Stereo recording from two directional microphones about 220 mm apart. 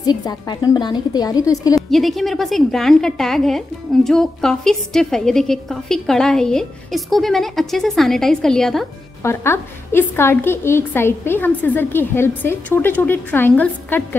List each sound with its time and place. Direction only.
0.0 s a woman's voice: 20° left (ahead or behind)
1.8 s a woman's voice: centre (ahead or behind)